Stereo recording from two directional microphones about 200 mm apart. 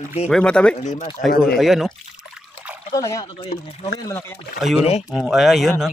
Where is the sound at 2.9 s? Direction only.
15° left (ahead or behind).